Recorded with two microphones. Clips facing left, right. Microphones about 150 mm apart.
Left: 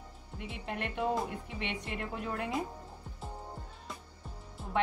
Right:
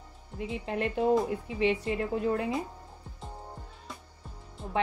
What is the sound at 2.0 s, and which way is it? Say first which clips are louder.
Speech: right 8 dB; 30° right (ahead or behind).